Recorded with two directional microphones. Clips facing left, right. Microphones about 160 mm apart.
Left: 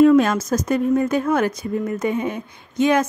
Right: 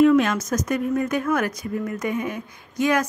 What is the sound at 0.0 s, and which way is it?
Speech, 35° left (ahead or behind).